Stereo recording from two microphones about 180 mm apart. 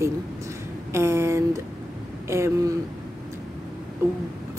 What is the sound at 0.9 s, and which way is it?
Speech, 15° right (ahead or behind).